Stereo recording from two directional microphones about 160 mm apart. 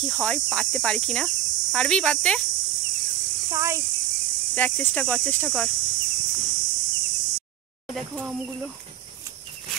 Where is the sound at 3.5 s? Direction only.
20° right (ahead or behind).